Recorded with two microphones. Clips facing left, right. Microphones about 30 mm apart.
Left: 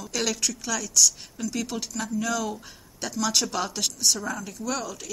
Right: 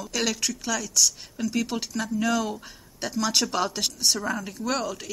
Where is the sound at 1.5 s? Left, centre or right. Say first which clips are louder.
Right 3 dB; centre.